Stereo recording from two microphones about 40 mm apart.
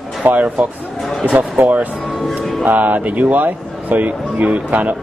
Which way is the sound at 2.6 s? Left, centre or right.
Right.